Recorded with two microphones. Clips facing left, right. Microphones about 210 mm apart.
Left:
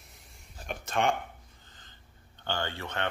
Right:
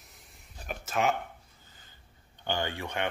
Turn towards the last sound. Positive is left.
turn(degrees=-15)  # may be behind; listen again after turning